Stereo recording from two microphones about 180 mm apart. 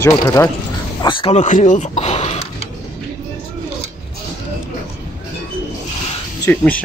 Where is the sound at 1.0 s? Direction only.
30° left (ahead or behind).